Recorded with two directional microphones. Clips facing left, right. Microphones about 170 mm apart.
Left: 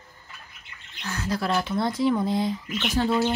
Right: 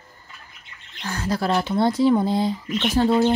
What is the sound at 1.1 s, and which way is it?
Speech, 35° right (ahead or behind).